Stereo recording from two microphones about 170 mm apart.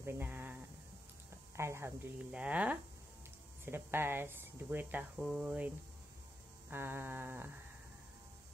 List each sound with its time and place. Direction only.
0.0 s a sound: 15° right (ahead or behind)
1.6 s speech: 15° right (ahead or behind)
6.7 s speech: 15° right (ahead or behind)